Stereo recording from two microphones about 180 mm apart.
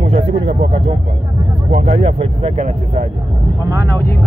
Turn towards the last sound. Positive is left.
turn(degrees=-35)  # may be behind; listen again after turning